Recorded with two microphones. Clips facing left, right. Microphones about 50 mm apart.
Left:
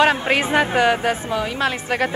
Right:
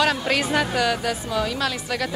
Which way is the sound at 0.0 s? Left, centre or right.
Left.